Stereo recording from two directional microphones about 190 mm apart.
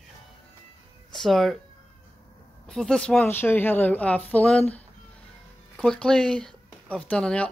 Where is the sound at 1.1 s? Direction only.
Centre (ahead or behind).